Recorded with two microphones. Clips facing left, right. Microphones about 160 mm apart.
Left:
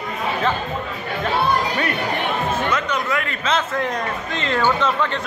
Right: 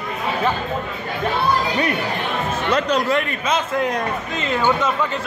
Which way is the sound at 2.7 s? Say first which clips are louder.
Right 4 dB; 35° right (ahead or behind).